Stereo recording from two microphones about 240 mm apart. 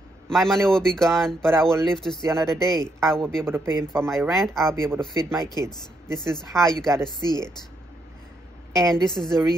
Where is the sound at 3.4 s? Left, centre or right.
Centre.